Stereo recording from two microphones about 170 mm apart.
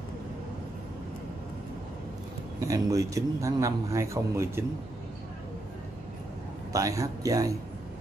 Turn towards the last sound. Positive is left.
turn(degrees=-20)  # may be behind; listen again after turning